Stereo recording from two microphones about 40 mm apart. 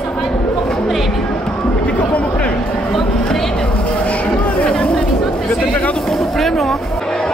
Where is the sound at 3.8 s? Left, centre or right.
Left.